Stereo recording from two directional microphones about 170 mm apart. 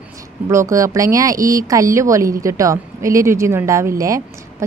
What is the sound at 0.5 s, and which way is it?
A woman's voice, 15° right (ahead or behind).